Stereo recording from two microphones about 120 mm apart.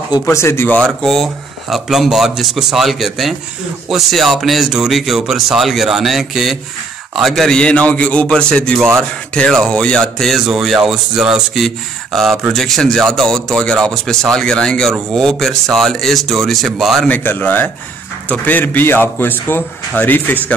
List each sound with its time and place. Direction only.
0.2 s speech: 25° left (ahead or behind)
0.7 s a man's voice: 5° left (ahead or behind)
17.1 s a man's voice: 15° left (ahead or behind)